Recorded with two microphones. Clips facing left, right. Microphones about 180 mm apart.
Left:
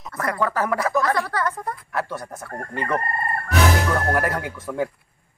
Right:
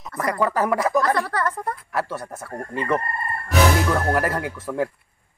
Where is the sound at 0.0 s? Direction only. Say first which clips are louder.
Right 2 dB; centre (ahead or behind).